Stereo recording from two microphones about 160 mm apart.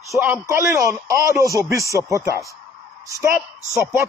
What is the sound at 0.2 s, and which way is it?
A man's voice, 15° right (ahead or behind).